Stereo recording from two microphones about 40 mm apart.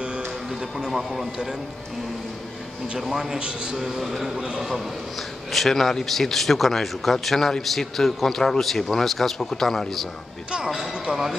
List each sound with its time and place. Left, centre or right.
0.5 s speech: centre
3.0 s a man's voice: centre
3.3 s a man's voice: right
3.7 s a man's voice: centre
5.5 s speech: centre